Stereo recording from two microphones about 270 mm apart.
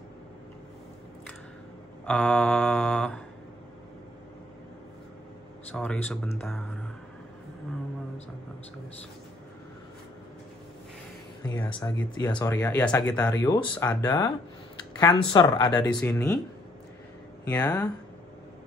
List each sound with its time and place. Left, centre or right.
2.0 s mantra: centre
5.7 s speech: centre
11.4 s speech: centre
15.7 s mantra: centre
17.5 s mantra: centre